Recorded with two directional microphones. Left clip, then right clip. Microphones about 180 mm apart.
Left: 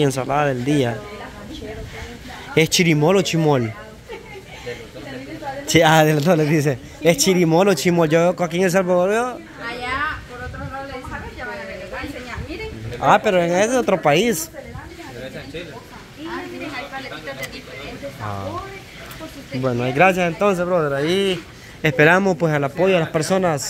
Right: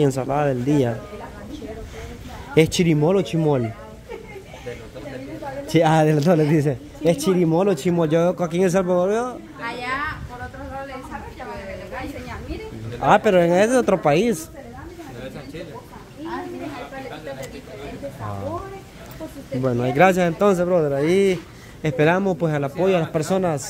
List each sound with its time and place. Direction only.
0.0 s speech: 15° right (ahead or behind)
2.5 s speech: 10° right (ahead or behind)
5.7 s speech: 5° right (ahead or behind)
6.7 s speech: 5° right (ahead or behind)
13.2 s speech: 25° right (ahead or behind); by 14.4 s 10° right (ahead or behind)
19.6 s speech: 15° right (ahead or behind)
21.0 s speech: 15° left (ahead or behind)
21.8 s speech: centre (ahead or behind)